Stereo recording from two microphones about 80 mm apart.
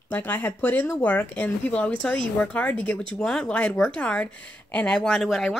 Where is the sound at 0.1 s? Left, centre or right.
Centre.